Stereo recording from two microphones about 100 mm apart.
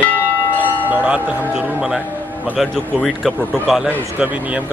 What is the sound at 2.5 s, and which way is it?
Speech, centre (ahead or behind).